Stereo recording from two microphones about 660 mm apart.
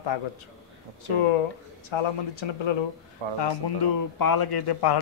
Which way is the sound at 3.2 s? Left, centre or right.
Right.